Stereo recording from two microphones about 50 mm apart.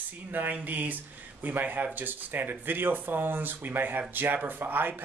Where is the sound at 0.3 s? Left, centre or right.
Right.